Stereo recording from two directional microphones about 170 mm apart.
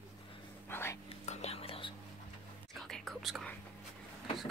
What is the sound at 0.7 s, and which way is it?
Whispering, 15° left (ahead or behind).